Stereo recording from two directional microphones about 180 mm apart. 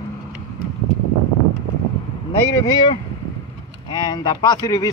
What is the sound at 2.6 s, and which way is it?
Speech, 25° left (ahead or behind).